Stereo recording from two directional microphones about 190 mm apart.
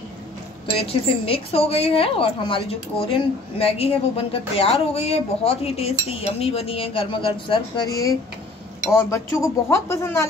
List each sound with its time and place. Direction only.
0.7 s a woman's voice: 30° left (ahead or behind)